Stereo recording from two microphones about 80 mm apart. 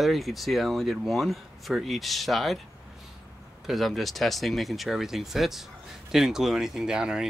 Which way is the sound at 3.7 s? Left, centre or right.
Centre.